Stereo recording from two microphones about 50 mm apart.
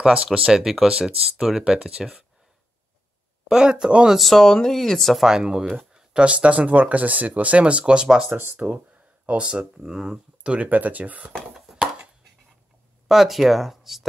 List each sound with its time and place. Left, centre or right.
0.0 s speech: centre
3.4 s speech: centre
4.2 s speech: centre
5.1 s speech: centre
8.4 s speech: right
11.5 s chop: centre
13.1 s speech: centre